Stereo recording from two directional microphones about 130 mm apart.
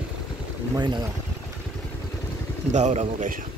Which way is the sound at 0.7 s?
35° right (ahead or behind).